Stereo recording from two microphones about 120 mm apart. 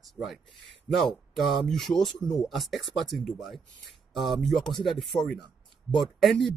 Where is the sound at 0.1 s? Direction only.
Centre (ahead or behind).